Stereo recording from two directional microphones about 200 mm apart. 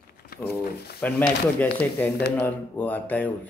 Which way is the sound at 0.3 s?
50° left (ahead or behind).